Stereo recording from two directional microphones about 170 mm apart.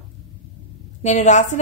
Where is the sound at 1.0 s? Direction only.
45° left (ahead or behind).